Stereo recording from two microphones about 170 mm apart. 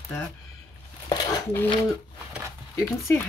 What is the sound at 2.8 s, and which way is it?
Speech, 15° left (ahead or behind).